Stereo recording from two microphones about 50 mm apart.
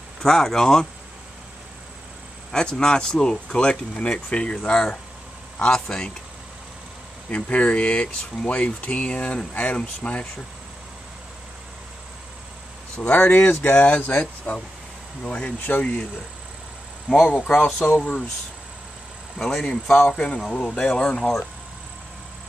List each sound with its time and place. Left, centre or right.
0.2 s speech: centre
2.5 s speech: centre
7.2 s speech: left
12.9 s speech: left
13.5 s speech: left
14.2 s speech: left
17.6 s speech: centre
19.3 s speech: centre
20.1 s speech: left